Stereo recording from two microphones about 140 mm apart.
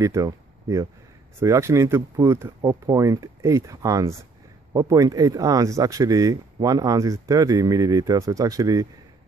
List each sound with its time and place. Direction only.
0.0 s speech: 25° right (ahead or behind)